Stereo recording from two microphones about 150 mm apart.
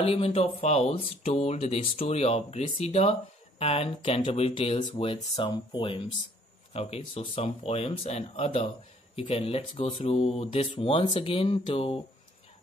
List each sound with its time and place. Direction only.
0.0 s speech: 40° left (ahead or behind)